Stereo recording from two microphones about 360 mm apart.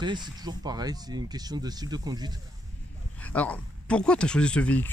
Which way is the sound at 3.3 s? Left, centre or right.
Centre.